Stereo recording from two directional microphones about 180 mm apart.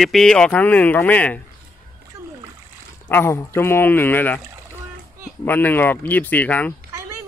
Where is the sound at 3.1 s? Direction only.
15° left (ahead or behind).